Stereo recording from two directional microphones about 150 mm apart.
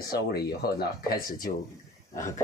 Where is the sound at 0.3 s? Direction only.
90° left.